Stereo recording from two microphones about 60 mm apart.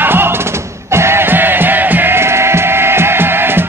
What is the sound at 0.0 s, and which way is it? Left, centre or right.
Music, right.